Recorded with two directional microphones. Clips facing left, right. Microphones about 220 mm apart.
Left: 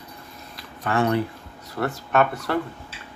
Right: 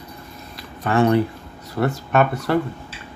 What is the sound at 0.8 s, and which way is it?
Speech, 25° right (ahead or behind).